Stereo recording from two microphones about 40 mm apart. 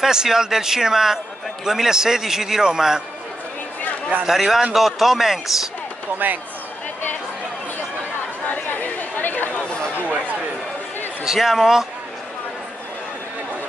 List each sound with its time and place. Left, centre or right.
0.0 s a man's voice: centre
4.3 s a man's voice: centre
6.1 s speech: right
8.5 s chatter: left
9.9 s a sound: right
11.2 s a man's voice: centre